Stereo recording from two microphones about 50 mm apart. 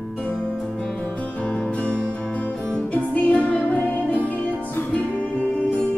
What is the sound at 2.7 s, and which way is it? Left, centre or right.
Music, left.